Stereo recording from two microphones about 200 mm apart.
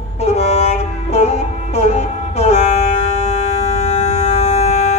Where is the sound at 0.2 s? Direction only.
30° left (ahead or behind).